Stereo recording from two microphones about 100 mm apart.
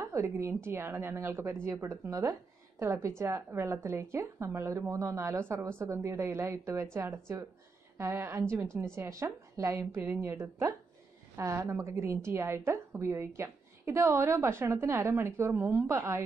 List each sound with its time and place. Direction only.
0.1 s a woman's voice: 30° right (ahead or behind)